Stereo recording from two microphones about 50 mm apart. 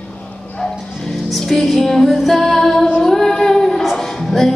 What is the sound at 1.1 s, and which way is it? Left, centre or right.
Music, centre.